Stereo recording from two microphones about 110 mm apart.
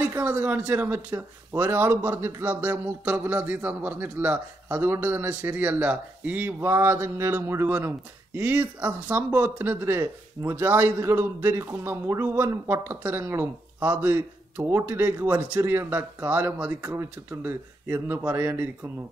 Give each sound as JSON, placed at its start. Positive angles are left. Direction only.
{"t": 0.0, "sound": "speech", "side_deg": -15}